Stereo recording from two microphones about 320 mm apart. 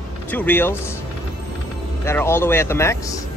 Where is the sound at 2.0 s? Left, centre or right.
Centre.